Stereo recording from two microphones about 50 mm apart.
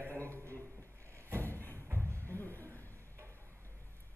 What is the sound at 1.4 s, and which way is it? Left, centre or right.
Music, left.